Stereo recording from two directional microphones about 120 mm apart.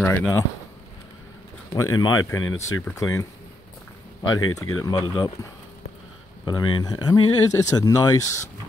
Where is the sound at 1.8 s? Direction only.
30° left (ahead or behind).